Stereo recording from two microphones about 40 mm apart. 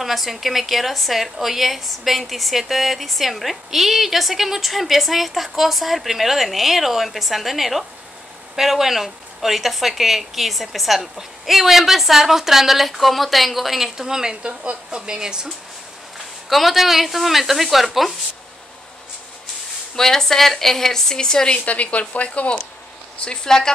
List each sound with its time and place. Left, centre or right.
0.0 s a woman's voice: centre
13.9 s speech: centre
16.4 s a woman's voice: centre
20.0 s speech: centre
21.6 s speech: left
23.2 s speech: centre